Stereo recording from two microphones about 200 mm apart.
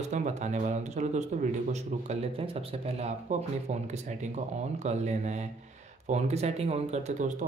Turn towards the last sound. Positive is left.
turn(degrees=-35)  # may be behind; listen again after turning